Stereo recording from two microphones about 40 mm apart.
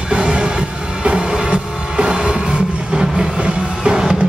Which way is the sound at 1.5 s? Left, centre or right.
Right.